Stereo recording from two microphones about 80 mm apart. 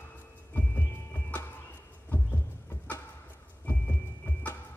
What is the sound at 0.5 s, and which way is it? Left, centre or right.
Music, left.